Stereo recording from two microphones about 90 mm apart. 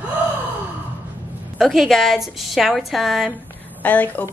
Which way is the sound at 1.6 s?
Centre (ahead or behind).